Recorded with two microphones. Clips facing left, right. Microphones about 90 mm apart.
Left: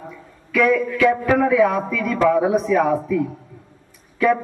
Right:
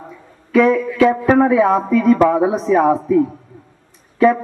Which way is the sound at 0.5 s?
30° right (ahead or behind).